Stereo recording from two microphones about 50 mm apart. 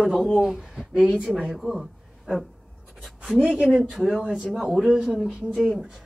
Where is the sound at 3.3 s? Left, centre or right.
Centre.